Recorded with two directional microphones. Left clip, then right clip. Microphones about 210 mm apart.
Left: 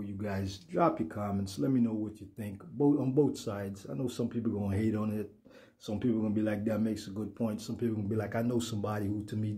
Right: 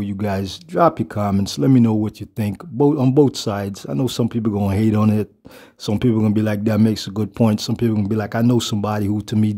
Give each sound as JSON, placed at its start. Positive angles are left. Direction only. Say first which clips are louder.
{"t": 0.2, "sound": "speech", "louder": "right 14 dB", "side_deg": -45}